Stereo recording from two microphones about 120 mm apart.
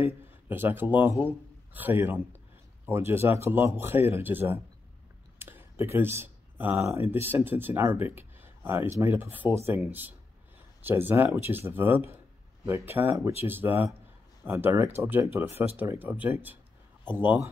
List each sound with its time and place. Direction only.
0.0 s a man's voice: 20° right (ahead or behind)